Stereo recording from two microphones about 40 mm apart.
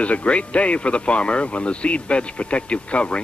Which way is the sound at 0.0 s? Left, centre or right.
Left.